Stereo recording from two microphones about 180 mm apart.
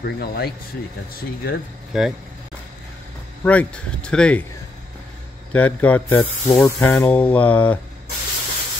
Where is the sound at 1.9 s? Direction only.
Centre (ahead or behind).